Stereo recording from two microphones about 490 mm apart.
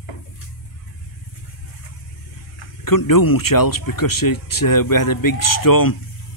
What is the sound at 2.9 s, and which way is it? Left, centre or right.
Speech, left.